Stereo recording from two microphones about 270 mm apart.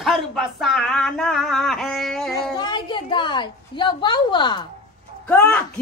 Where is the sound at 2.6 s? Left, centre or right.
Centre.